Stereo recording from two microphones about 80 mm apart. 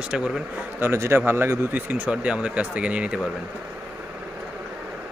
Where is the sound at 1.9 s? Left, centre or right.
Centre.